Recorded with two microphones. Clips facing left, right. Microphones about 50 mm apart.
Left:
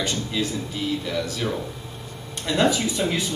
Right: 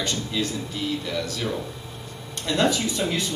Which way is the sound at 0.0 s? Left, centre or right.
Centre.